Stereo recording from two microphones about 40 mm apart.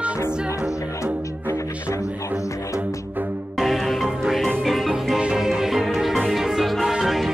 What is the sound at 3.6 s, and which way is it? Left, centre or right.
Music, centre.